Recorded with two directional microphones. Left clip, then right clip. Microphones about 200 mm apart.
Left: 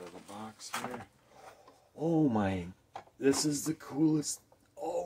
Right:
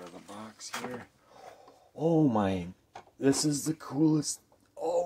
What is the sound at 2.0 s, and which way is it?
Speech, 15° right (ahead or behind).